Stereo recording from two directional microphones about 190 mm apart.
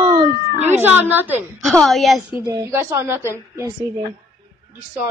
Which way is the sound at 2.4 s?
15° right (ahead or behind).